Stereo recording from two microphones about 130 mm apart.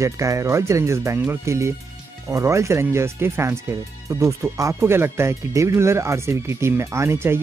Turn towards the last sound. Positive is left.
turn(degrees=-20)  # may be behind; listen again after turning